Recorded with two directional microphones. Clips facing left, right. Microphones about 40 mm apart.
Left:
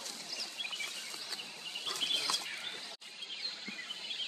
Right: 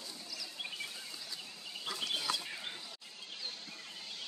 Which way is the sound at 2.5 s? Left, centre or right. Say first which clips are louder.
Left 1 dB; centre.